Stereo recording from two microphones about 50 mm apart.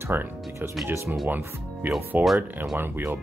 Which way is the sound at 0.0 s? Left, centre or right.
Right.